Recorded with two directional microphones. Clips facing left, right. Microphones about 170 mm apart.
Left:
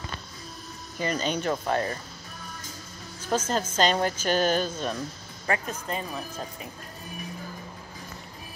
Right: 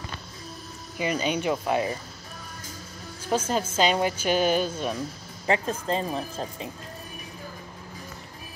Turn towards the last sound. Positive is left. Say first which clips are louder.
# right 3 dB
turn(degrees=-25)  # may be behind; listen again after turning